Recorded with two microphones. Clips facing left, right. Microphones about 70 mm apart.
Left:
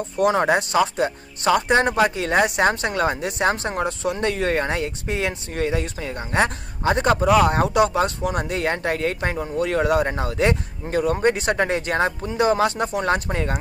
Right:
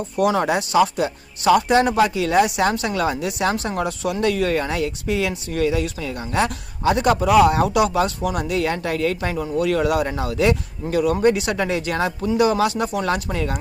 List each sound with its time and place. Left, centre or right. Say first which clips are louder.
0.2 s speech: left 1 dB; left